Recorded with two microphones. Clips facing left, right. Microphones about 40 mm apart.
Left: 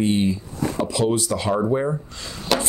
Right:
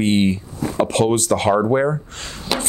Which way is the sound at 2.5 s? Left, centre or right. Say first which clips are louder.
Left 2 dB; centre.